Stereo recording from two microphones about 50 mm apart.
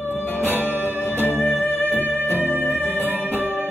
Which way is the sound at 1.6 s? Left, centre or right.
Left.